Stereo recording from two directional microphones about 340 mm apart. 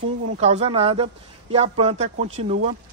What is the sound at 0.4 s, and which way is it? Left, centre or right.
Speech, centre.